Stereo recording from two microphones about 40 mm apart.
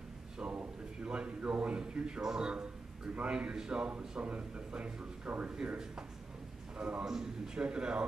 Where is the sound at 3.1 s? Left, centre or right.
Right.